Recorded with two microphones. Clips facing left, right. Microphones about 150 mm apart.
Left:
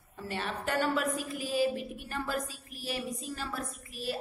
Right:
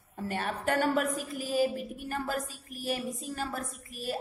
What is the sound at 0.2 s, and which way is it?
A woman's voice, 50° right (ahead or behind).